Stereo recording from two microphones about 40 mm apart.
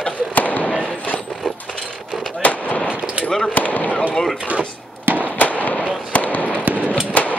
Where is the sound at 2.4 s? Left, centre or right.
Left.